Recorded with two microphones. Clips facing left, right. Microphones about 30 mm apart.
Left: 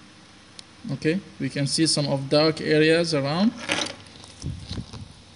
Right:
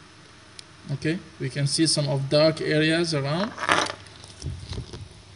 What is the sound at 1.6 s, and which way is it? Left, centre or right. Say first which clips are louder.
Speech: even; left.